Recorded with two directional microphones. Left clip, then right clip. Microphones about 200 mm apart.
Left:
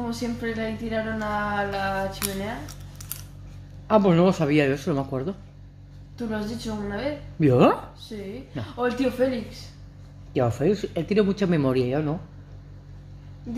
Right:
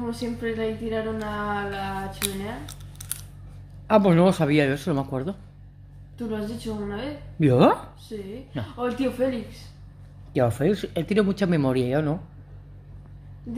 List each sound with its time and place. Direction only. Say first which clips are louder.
0.1 s speech: even; 10° left (ahead or behind)
3.8 s speech: right 1 dB; 25° right (ahead or behind)
6.1 s a woman's voice: left 1 dB; 5° left (ahead or behind)
7.3 s speech: even; 20° right (ahead or behind)
8.1 s a woman's voice: right 1 dB; centre (ahead or behind)
10.3 s speech: even; 25° right (ahead or behind)